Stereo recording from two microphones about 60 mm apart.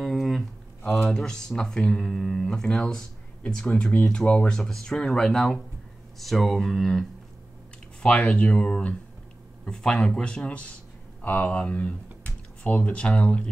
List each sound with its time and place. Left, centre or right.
0.0 s a sound: centre
0.8 s speech: left
1.1 s speech: centre